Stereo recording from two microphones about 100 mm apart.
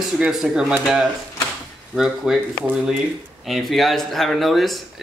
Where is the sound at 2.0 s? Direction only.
5° right (ahead or behind).